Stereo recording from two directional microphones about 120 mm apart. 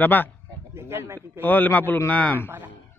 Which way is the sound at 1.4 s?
15° left (ahead or behind).